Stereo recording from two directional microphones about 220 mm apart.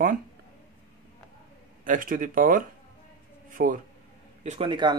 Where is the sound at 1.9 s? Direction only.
35° right (ahead or behind).